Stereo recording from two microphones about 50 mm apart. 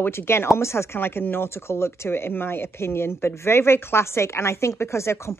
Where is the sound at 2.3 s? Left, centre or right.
Left.